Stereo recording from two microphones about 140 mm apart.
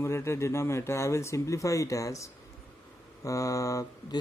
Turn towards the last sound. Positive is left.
turn(degrees=25)  # may be behind; listen again after turning